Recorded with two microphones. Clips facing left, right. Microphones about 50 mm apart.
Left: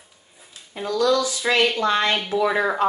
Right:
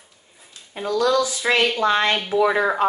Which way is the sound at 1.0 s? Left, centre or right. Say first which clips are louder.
Even; centre.